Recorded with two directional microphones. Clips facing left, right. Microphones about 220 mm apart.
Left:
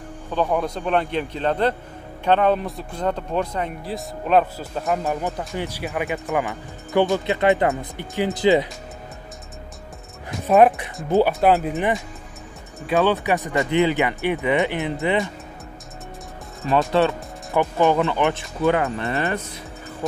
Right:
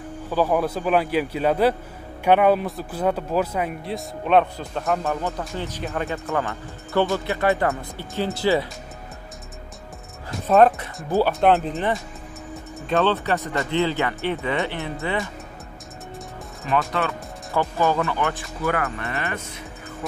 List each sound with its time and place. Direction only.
0.3 s a man's voice: 5° right (ahead or behind); by 8.6 s 15° left (ahead or behind)
10.4 s speech: 15° left (ahead or behind)
11.3 s speech: 5° left (ahead or behind)
11.7 s speech: 15° left (ahead or behind)
16.6 s speech: 35° left (ahead or behind)
17.6 s speech: 15° left (ahead or behind)
18.9 s speech: 30° left (ahead or behind)